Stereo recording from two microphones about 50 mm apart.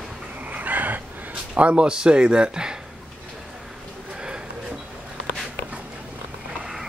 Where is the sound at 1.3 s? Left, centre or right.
Right.